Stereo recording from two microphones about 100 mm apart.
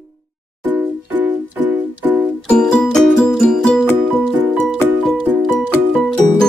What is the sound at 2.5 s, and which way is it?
Music, 5° left (ahead or behind).